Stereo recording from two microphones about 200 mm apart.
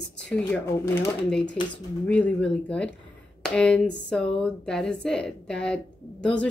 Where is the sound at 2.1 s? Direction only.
5° left (ahead or behind).